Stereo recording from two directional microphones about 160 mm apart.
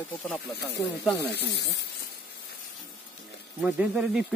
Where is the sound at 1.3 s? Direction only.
90° left.